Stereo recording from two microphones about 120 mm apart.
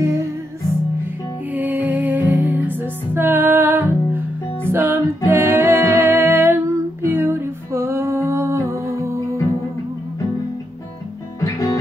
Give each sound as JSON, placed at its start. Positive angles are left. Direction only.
{"t": 0.0, "sound": "music", "side_deg": -25}
{"t": 1.5, "sound": "music", "side_deg": -15}
{"t": 11.4, "sound": "music", "side_deg": 30}